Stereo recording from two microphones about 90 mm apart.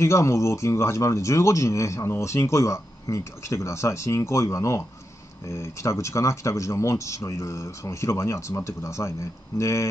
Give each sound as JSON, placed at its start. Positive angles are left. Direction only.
{"t": 0.0, "sound": "speech", "side_deg": 30}